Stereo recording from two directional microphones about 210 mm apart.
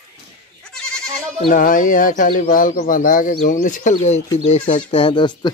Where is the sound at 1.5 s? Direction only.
40° left (ahead or behind).